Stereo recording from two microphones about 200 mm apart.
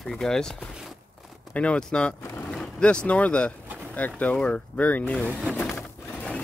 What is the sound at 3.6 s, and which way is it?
Pigeon, 10° right (ahead or behind).